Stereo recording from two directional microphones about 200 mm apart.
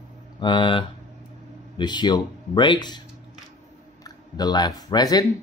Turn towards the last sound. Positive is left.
turn(degrees=20)  # may be behind; listen again after turning